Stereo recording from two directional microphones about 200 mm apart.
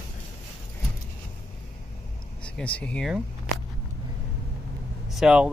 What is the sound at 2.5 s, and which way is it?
Speech, 5° left (ahead or behind).